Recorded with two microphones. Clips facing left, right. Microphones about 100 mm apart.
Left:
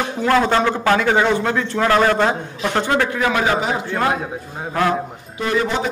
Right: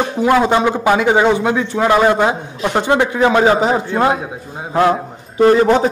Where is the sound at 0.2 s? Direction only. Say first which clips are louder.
Right 3 dB; 15° right (ahead or behind); by 3.8 s 30° right (ahead or behind).